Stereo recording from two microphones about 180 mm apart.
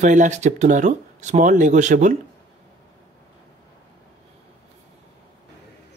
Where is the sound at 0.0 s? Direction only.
45° right (ahead or behind).